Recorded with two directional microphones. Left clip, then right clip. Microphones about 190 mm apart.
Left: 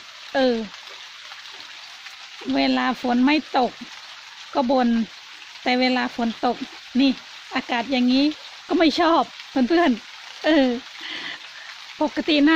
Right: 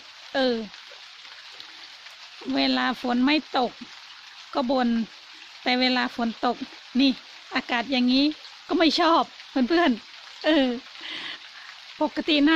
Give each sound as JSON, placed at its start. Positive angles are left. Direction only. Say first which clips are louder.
{"t": 0.3, "sound": "speech", "louder": "left 4 dB", "side_deg": -15}
{"t": 2.5, "sound": "frying", "louder": "left 3 dB", "side_deg": -15}
{"t": 10.4, "sound": "a sound", "louder": "left 3 dB", "side_deg": -15}
{"t": 12.0, "sound": "frying", "louder": "left 3 dB", "side_deg": -15}